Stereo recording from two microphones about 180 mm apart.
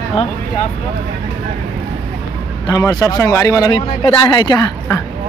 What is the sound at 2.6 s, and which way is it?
A man's voice, 20° left (ahead or behind).